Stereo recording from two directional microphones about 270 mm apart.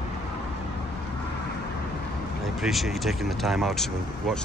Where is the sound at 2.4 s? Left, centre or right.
Centre.